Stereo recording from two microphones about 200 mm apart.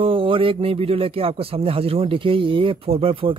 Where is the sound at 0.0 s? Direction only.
25° right (ahead or behind).